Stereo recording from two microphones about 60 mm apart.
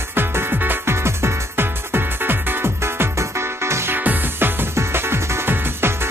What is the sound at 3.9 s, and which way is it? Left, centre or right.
Music, right.